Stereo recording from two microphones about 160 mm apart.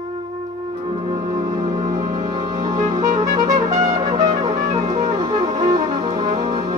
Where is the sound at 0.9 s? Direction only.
35° right (ahead or behind).